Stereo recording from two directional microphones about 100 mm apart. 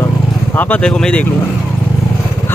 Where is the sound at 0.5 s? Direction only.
15° left (ahead or behind).